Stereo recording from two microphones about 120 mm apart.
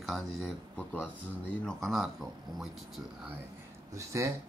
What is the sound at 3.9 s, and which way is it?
Speech, 25° right (ahead or behind).